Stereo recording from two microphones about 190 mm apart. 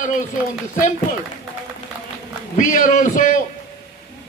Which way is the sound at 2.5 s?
45° left (ahead or behind).